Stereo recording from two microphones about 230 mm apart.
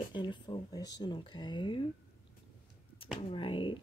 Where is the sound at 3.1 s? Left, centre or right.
Left.